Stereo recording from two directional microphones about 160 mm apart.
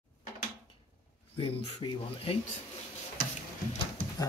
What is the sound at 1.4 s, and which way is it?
Speech, 35° left (ahead or behind).